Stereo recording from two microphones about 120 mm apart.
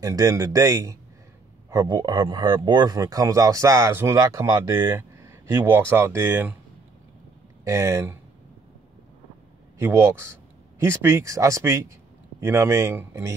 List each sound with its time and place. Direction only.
0.0 s speech: 30° right (ahead or behind)
7.6 s speech: 25° right (ahead or behind)
9.8 s speech: 20° right (ahead or behind)